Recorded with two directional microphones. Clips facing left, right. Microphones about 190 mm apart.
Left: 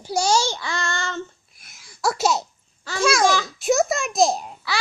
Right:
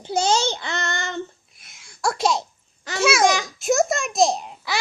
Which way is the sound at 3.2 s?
15° right (ahead or behind).